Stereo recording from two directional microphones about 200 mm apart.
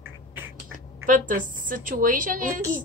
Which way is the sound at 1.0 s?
40° right (ahead or behind).